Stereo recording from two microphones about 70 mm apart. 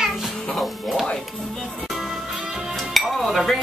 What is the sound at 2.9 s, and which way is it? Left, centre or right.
Dishes, centre.